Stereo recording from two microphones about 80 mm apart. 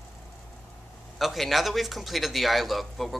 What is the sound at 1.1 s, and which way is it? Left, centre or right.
A man's voice, centre.